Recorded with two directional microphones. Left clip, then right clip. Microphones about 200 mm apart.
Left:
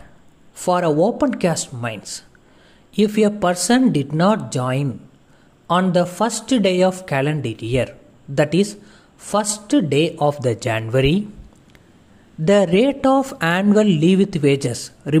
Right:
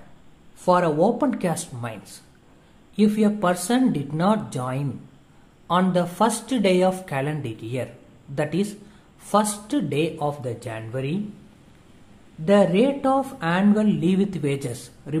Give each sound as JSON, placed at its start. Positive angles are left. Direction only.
{"t": 0.7, "sound": "speech", "side_deg": 30}
{"t": 12.4, "sound": "speech", "side_deg": 35}